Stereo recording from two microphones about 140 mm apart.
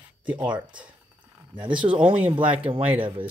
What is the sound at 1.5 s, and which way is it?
Speech, 35° right (ahead or behind).